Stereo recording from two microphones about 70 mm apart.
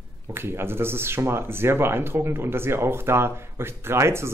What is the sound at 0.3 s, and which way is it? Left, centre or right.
Speech, right.